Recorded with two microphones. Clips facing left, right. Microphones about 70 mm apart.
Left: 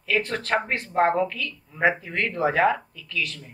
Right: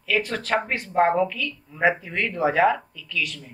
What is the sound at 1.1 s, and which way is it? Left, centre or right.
A woman's voice, centre.